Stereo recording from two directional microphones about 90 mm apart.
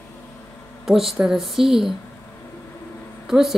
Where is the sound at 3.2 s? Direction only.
5° right (ahead or behind).